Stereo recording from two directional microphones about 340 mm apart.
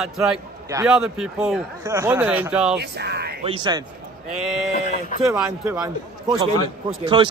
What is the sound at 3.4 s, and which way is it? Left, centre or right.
Speech, centre.